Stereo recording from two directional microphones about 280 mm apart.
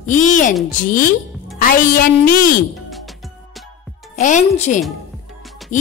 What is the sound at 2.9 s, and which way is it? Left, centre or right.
Music, centre.